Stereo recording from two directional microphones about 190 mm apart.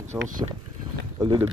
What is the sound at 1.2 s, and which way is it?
Speech, 20° right (ahead or behind).